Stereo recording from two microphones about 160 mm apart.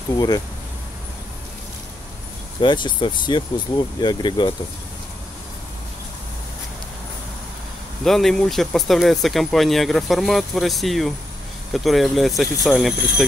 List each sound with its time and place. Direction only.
2.6 s speech: 30° left (ahead or behind)
8.0 s speech: centre (ahead or behind)